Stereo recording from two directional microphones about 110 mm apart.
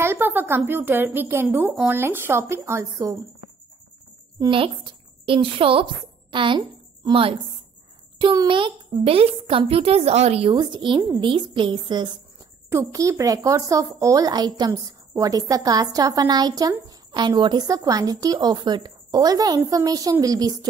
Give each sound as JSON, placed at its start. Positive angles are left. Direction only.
{"t": 0.0, "sound": "a woman's voice", "side_deg": -20}
{"t": 4.5, "sound": "a woman's voice", "side_deg": -50}
{"t": 8.2, "sound": "a woman's voice", "side_deg": -45}
{"t": 10.5, "sound": "a woman's voice", "side_deg": -45}
{"t": 12.6, "sound": "a woman's voice", "side_deg": -30}